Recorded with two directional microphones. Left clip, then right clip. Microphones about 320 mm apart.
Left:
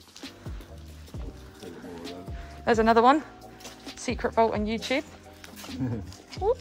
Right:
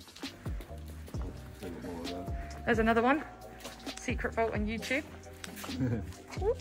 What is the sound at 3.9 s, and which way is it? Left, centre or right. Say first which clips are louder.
Speech: left 6 dB; centre.